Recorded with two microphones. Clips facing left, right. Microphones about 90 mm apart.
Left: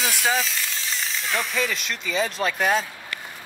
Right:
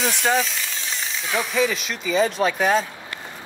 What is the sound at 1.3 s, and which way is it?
Speech, 5° right (ahead or behind).